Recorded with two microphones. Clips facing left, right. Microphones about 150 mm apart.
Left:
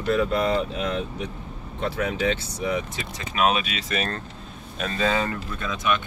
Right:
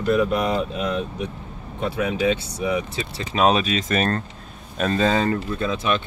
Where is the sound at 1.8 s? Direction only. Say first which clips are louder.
Right 3 dB; 15° right (ahead or behind).